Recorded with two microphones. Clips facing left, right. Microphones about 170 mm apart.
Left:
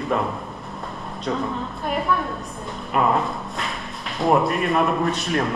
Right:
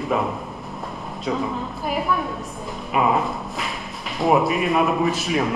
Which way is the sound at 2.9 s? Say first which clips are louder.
Even; 5° right (ahead or behind).